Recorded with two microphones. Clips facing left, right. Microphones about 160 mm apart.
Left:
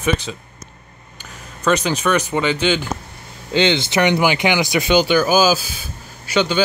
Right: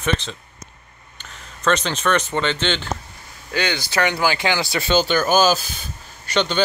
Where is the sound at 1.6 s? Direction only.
10° left (ahead or behind).